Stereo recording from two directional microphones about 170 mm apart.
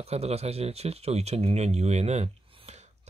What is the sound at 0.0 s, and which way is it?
Speech, 40° right (ahead or behind).